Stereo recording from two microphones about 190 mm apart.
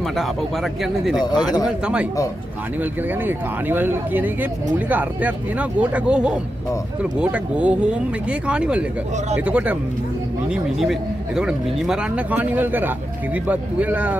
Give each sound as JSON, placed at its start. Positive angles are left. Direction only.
{"t": 0.1, "sound": "a man's voice", "side_deg": 0}
{"t": 1.2, "sound": "a man's voice", "side_deg": 20}
{"t": 2.8, "sound": "speech", "side_deg": -10}